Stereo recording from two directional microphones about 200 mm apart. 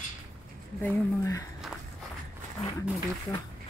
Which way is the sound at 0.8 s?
15° left (ahead or behind).